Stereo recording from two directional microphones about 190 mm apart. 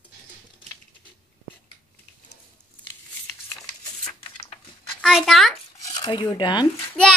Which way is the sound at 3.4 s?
15° left (ahead or behind).